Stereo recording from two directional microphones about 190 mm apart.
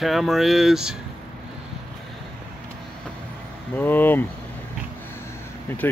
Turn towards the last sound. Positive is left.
turn(degrees=10)  # may be behind; listen again after turning